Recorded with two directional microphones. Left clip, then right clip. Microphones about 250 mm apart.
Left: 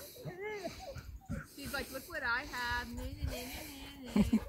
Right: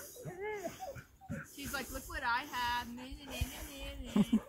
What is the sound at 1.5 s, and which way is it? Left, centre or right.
Snake, right.